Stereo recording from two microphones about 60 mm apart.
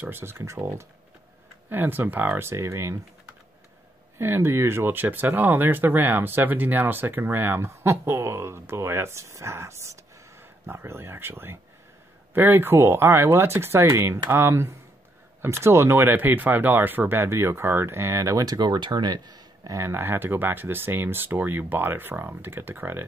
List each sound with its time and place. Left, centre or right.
0.0 s speech: right
1.7 s speech: right
2.4 s speech: right
4.2 s speech: right
7.7 s speech: right
17.3 s speech: right
18.2 s speech: right
19.3 s a sound: right
19.8 s speech: right